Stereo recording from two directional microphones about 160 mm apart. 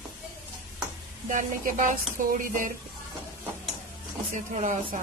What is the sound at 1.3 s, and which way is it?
Speech, 55° right (ahead or behind).